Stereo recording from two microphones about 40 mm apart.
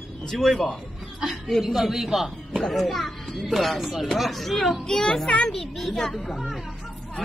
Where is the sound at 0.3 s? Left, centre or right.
Centre.